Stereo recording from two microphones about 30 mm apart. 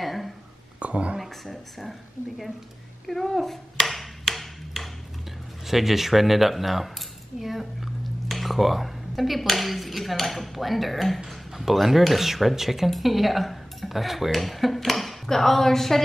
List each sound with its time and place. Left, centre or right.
0.0 s a sound: centre
0.7 s whispering: right
1.2 s speech: centre
3.8 s tick-tock: centre
5.7 s speech: centre